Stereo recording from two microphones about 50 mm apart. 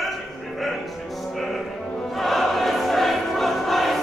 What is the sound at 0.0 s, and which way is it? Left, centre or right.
Music, centre.